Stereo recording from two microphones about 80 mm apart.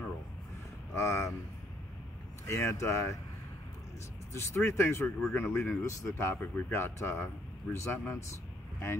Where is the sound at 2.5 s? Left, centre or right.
Left.